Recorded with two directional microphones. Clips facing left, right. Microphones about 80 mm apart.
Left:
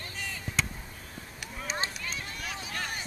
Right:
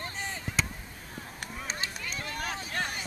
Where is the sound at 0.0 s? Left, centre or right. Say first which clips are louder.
Right 3 dB; right.